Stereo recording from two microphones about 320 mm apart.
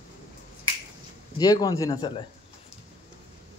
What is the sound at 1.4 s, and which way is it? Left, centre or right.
Speech, centre.